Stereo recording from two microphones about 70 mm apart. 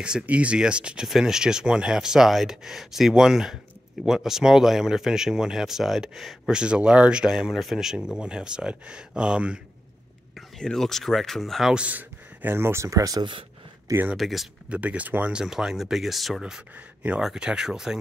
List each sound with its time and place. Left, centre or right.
0.0 s speech: centre
6.6 s speech: centre
10.6 s speech: centre
11.7 s speech: centre; by 13.3 s right
14.1 s speech: centre
14.7 s speech: centre
15.3 s speech: centre